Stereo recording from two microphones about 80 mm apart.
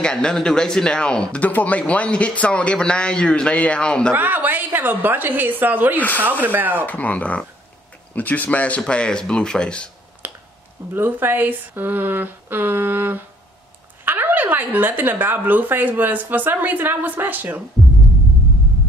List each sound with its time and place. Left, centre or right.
0.0 s speech: centre
4.1 s speech: right
5.9 s speech: left
6.4 s speech: right
6.9 s speech: centre
10.2 s a sound: right
10.9 s speech: right